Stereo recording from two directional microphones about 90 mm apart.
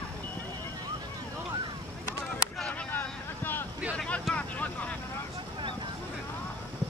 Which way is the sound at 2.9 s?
20° left (ahead or behind).